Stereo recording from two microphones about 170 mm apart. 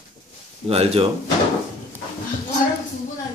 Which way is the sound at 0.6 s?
35° right (ahead or behind).